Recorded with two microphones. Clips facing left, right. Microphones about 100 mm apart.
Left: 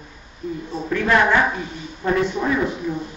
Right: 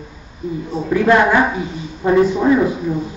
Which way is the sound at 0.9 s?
20° right (ahead or behind).